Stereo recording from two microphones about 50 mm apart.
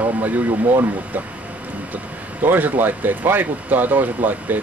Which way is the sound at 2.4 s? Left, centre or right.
Right.